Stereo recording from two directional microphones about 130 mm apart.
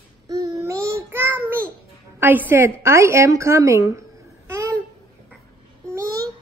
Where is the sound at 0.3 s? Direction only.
30° right (ahead or behind).